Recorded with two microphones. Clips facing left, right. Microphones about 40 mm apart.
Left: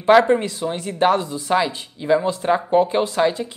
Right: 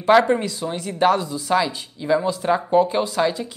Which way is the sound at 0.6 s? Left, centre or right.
Centre.